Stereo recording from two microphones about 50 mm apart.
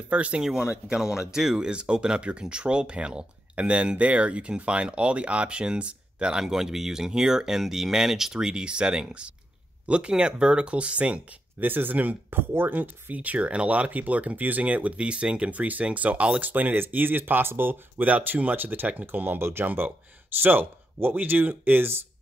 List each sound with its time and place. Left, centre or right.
0.1 s speech: right
0.8 s speech: centre
6.4 s speech: centre; by 11.2 s right
11.6 s speech: right
18.0 s speech: right